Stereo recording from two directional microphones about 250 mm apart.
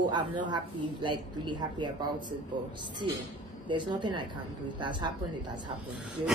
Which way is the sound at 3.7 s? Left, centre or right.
Centre.